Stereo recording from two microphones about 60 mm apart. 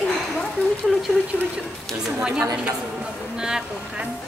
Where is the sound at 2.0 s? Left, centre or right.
Centre.